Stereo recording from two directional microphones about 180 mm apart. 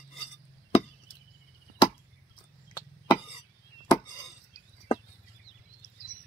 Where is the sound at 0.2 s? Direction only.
25° left (ahead or behind).